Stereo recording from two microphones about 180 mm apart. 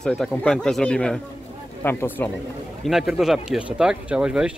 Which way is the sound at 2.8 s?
Centre (ahead or behind).